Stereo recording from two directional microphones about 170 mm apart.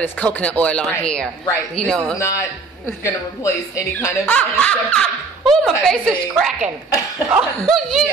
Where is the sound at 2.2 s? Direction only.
20° left (ahead or behind).